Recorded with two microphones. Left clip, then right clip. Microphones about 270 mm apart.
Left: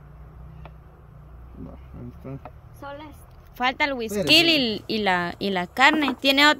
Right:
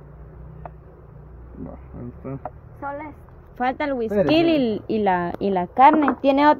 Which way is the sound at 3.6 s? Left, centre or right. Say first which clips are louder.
Even; centre.